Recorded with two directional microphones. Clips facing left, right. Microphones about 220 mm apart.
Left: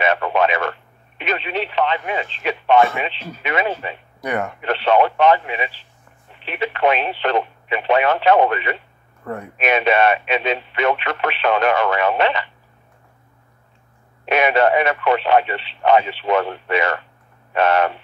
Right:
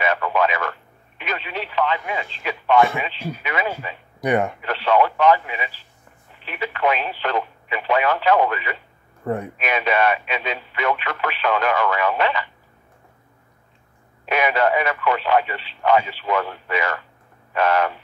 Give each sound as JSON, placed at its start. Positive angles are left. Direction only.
{"t": 0.0, "sound": "speech", "side_deg": 25}
{"t": 4.2, "sound": "speech", "side_deg": -15}
{"t": 4.6, "sound": "speech", "side_deg": 25}
{"t": 9.2, "sound": "speech", "side_deg": -25}
{"t": 9.6, "sound": "speech", "side_deg": 25}
{"t": 14.3, "sound": "speech", "side_deg": 25}